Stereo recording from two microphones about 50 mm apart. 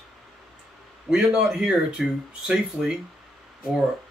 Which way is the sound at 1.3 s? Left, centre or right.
Centre.